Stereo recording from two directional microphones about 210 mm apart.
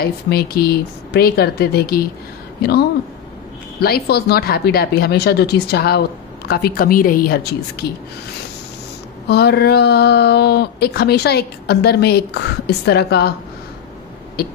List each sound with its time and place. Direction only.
0.0 s speech: 45° left (ahead or behind)
9.3 s speech: 50° left (ahead or behind)